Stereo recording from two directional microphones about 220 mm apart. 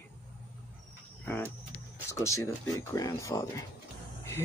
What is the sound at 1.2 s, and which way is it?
Speech, 10° left (ahead or behind).